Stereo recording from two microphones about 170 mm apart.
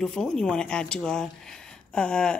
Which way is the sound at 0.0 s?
5° left (ahead or behind).